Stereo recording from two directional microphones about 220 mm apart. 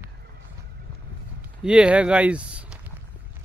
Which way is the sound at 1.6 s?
5° right (ahead or behind).